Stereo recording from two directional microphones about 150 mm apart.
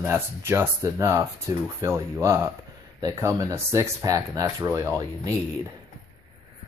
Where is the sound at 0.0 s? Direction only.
15° right (ahead or behind).